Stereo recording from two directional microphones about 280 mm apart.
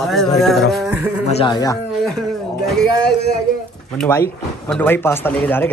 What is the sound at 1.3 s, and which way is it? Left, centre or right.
Speech, centre.